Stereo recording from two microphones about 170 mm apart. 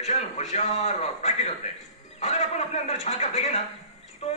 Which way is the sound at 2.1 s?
40° left (ahead or behind).